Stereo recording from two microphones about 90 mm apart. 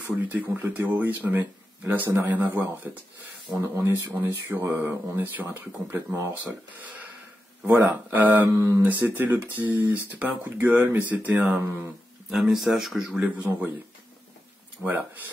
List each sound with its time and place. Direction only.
0.0 s speech: 25° right (ahead or behind)
3.5 s speech: 30° right (ahead or behind)
7.6 s speech: 20° right (ahead or behind)
8.5 s mantra: 35° right (ahead or behind)
8.8 s speech: 20° right (ahead or behind)
12.3 s speech: 5° right (ahead or behind)
14.8 s speech: 20° right (ahead or behind)